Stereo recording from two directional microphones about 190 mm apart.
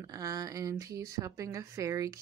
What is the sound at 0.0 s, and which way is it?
Speech, 20° right (ahead or behind).